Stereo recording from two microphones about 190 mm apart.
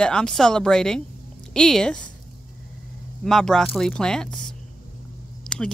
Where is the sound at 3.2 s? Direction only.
5° left (ahead or behind).